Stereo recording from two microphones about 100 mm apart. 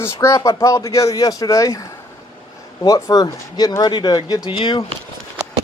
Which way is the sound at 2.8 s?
35° left (ahead or behind).